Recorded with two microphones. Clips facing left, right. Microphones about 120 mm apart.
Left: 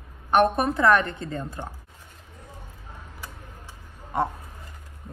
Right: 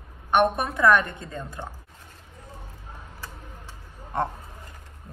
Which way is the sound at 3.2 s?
10° left (ahead or behind).